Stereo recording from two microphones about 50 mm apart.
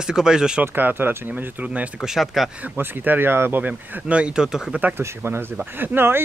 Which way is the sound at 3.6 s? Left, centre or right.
Right.